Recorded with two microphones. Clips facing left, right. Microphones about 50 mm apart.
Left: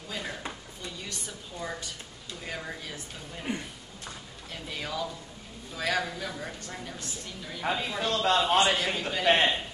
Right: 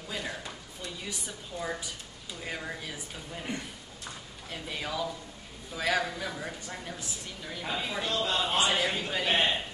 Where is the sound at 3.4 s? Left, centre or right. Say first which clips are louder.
Left 5 dB; centre.